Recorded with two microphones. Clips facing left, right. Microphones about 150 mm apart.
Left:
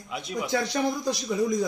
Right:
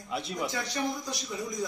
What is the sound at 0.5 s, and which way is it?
Speech, 75° left (ahead or behind).